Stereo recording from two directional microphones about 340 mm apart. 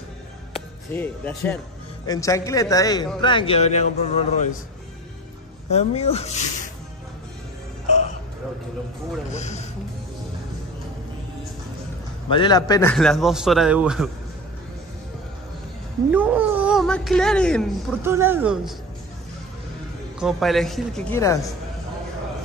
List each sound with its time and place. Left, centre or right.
0.5 s a man's voice: centre
5.7 s speech: centre
9.3 s speech: centre
12.3 s speech: centre
16.1 s speech: centre
20.2 s speech: centre